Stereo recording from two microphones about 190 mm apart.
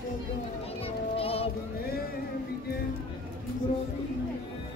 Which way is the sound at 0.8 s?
30° left (ahead or behind).